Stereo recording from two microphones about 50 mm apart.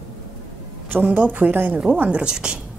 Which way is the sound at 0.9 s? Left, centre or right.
Right.